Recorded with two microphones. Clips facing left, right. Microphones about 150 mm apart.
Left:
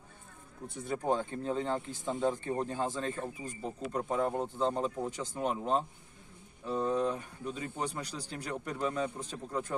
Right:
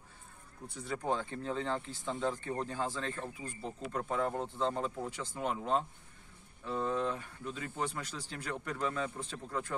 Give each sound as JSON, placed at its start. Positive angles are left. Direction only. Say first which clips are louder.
{"t": 0.7, "sound": "speech", "louder": "left 3 dB", "side_deg": 20}